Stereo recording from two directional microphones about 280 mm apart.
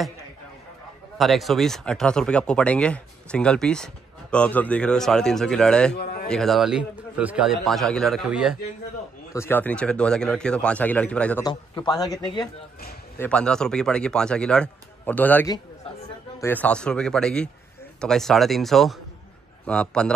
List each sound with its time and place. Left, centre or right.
1.1 s speech: centre
5.9 s a sound: left
6.2 s speech: centre
9.3 s speech: centre
13.2 s speech: centre